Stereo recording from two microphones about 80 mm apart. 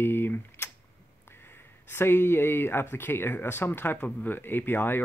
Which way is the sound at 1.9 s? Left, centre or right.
Left.